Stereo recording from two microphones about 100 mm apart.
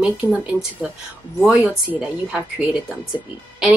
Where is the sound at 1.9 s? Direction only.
10° right (ahead or behind).